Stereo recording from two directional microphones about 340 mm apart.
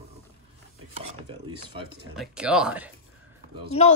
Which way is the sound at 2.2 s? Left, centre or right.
Centre.